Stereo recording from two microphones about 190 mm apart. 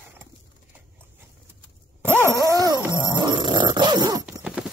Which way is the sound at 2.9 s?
20° right (ahead or behind).